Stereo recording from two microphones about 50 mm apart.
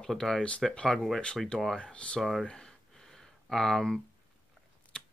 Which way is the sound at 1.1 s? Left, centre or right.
Centre.